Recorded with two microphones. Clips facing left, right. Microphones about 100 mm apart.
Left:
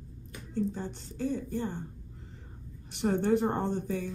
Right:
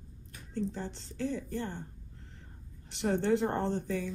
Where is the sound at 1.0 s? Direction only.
15° left (ahead or behind).